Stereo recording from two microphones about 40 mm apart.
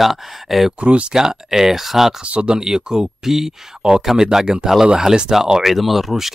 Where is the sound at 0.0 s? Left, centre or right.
Centre.